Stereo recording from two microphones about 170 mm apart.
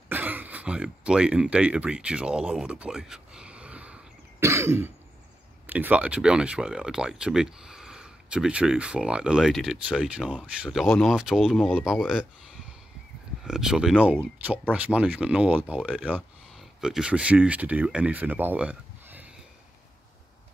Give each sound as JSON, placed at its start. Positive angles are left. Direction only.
{"t": 0.1, "sound": "speech", "side_deg": -10}
{"t": 13.4, "sound": "speech", "side_deg": -5}